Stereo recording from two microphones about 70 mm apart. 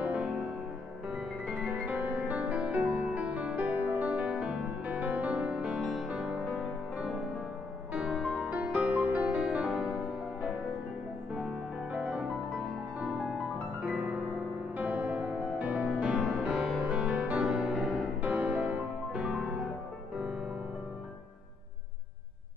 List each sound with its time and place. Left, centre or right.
0.0 s music: right
5.8 s music: centre
6.4 s music: centre
7.9 s music: centre
8.5 s music: right
11.3 s music: centre
13.8 s piano: centre
14.8 s music: right; by 16.9 s centre
16.9 s music: centre